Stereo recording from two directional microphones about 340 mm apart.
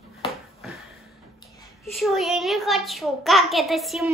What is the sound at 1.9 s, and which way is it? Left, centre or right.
Speech, centre.